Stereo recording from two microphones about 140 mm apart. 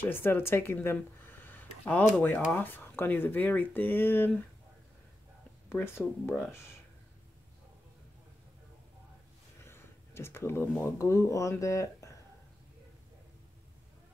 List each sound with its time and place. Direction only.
0.0 s speech: 15° left (ahead or behind)
5.8 s speech: 15° left (ahead or behind)
9.6 s a sound: 20° left (ahead or behind)
10.8 s speech: 20° left (ahead or behind)